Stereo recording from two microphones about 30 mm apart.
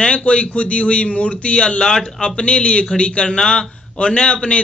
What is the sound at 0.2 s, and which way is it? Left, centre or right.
A man's voice, left.